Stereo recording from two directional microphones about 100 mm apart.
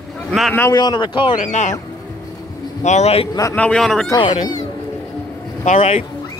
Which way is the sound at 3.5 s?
10° left (ahead or behind).